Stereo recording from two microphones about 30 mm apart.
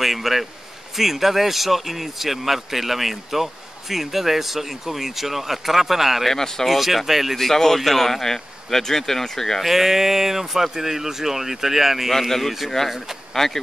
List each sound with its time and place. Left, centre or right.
0.0 s a sound: centre
0.9 s speech: centre
6.3 s speech: centre
6.7 s speech: centre
7.3 s speech: centre
9.6 s speech: centre
12.1 s speech: centre